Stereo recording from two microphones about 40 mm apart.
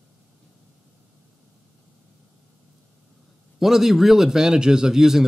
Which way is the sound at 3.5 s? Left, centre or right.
Centre.